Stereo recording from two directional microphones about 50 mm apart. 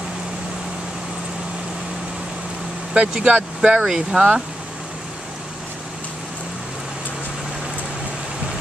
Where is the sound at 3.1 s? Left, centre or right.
Right.